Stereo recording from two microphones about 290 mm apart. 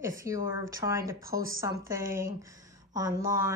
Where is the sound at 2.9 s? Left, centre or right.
Centre.